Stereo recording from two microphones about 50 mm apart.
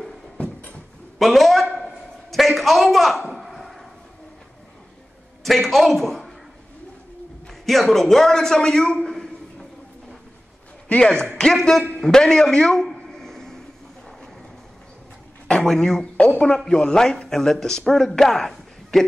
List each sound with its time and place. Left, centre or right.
1.1 s a man's voice: centre
2.3 s a sound: centre
5.4 s a man's voice: centre
7.6 s a man's voice: centre
10.9 s a man's voice: left
11.3 s speech: centre
12.9 s a sound: centre
15.6 s speech: centre